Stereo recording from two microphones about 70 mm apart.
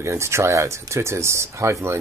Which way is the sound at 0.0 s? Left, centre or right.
Right.